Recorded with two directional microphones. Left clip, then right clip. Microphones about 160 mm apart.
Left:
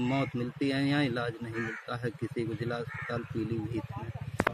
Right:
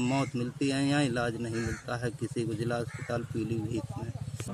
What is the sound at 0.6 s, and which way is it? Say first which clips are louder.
Speech: right 1 dB; 50° right (ahead or behind).